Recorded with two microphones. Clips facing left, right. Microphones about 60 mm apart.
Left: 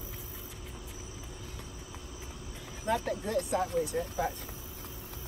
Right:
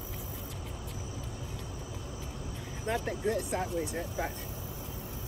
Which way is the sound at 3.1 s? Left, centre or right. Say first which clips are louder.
Even; right.